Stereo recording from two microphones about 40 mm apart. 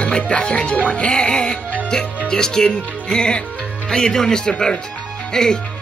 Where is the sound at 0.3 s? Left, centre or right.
Left.